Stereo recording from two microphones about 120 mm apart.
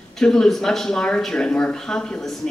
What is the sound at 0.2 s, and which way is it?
Speech, 5° left (ahead or behind).